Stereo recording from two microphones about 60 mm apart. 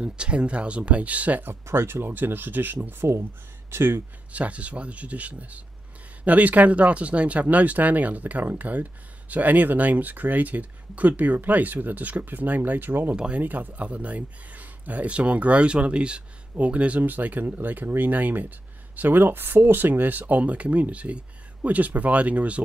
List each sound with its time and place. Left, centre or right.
0.0 s speech: centre
1.5 s speech: right
3.7 s speech: right
4.3 s speech: right
13.1 s speech: centre
13.4 s speech: right